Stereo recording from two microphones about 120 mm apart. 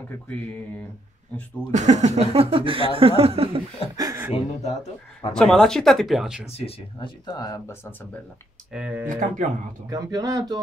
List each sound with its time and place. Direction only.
1.7 s speech: 80° right; by 3.6 s 55° right (ahead or behind)
3.9 s speech: 30° right (ahead or behind)
5.3 s speech: 5° left (ahead or behind)
6.5 s speech: 55° left (ahead or behind)
7.2 s speech: 30° left (ahead or behind)
8.7 s speech: 10° right (ahead or behind)
9.0 s speech: 90° right
9.8 s speech: 30° right (ahead or behind)